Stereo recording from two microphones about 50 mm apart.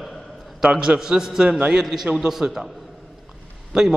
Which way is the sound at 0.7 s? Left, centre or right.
Centre.